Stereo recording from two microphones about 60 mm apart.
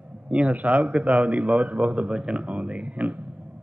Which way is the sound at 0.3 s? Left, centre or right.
Right.